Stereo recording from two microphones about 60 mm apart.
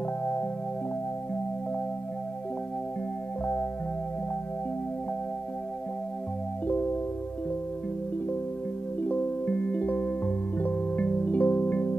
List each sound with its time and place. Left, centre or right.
6.7 s music: left
9.0 s music: left